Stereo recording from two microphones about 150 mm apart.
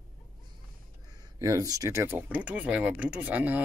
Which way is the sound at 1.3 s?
25° right (ahead or behind).